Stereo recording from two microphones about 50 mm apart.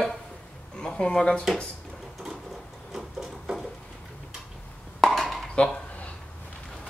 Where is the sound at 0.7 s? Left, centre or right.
Centre.